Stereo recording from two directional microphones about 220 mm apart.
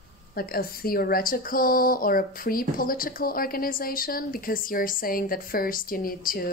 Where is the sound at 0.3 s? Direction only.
45° left (ahead or behind).